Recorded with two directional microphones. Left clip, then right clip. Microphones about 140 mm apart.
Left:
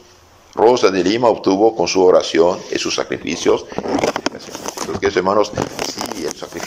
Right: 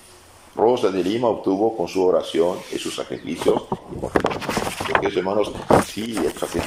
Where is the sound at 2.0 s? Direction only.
15° right (ahead or behind).